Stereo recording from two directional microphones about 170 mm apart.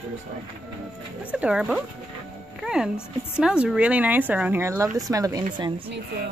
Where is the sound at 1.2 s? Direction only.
10° right (ahead or behind).